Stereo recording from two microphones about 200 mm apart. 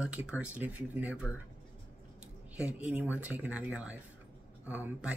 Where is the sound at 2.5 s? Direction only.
5° right (ahead or behind).